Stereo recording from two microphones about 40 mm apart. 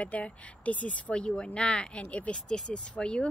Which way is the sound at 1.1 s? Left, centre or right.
Left.